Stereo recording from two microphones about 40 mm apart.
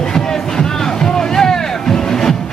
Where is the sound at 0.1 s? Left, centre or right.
Centre.